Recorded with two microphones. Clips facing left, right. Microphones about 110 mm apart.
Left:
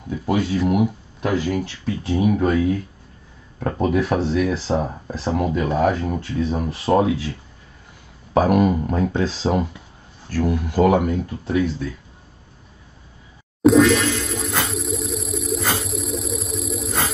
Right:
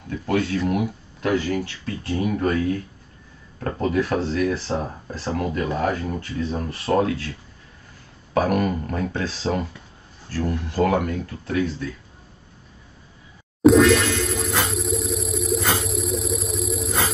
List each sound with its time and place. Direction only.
0.1 s speech: 15° left (ahead or behind)
8.4 s speech: 15° left (ahead or behind)
13.6 s a sound: centre (ahead or behind)